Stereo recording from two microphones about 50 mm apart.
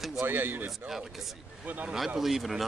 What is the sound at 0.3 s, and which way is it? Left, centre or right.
Speech, right.